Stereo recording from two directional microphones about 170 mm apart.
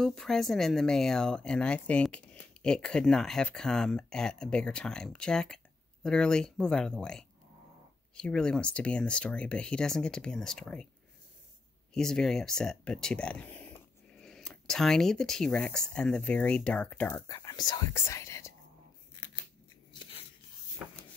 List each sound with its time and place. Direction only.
0.0 s speech: centre (ahead or behind)
11.9 s speech: 5° left (ahead or behind)
17.1 s speech: 20° left (ahead or behind)
19.9 s a sound: 30° left (ahead or behind)